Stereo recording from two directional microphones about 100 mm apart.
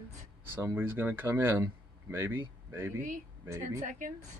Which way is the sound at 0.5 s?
20° right (ahead or behind).